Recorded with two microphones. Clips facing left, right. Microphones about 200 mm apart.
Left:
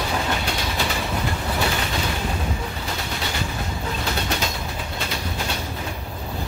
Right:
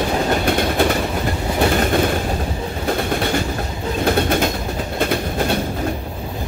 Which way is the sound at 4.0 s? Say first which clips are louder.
Right 12 dB; 55° right (ahead or behind).